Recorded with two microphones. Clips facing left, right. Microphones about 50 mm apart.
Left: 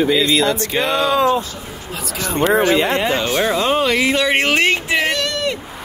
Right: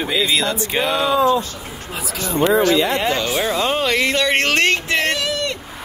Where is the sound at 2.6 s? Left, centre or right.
Left.